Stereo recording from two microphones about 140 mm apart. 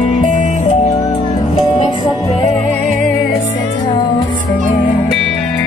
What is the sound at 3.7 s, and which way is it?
Music, 35° left (ahead or behind).